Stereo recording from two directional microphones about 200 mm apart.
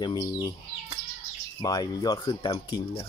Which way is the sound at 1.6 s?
20° left (ahead or behind).